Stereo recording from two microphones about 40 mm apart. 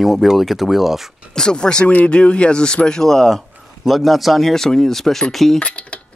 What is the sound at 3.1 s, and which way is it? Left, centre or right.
Speech, centre.